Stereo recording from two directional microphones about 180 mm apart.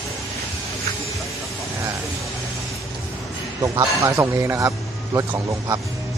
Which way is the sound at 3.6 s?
20° right (ahead or behind).